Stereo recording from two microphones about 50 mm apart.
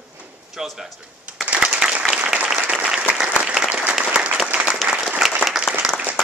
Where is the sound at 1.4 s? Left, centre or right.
Right.